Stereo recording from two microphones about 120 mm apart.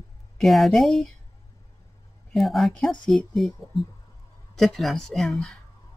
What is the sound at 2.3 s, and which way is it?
A woman's voice, centre (ahead or behind).